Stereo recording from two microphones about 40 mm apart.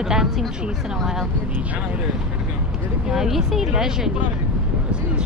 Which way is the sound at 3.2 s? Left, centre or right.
Centre.